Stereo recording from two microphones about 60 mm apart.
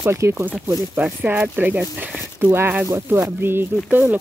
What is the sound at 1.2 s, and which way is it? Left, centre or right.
Speech, right.